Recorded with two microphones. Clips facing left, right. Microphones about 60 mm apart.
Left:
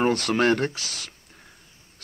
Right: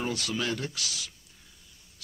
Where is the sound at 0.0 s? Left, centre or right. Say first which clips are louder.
Left 10 dB; left.